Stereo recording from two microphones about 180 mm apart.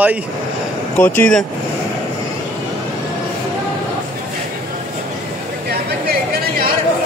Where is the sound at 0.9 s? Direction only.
10° left (ahead or behind).